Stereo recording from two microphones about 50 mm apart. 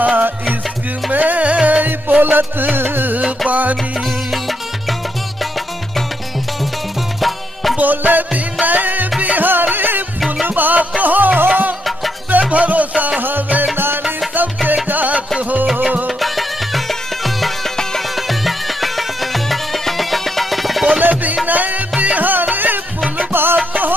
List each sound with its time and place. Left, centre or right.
0.0 s music: right
3.4 s music: right
4.3 s music: centre
7.2 s music: centre
7.7 s music: right
14.9 s music: right
15.6 s music: centre
21.0 s music: right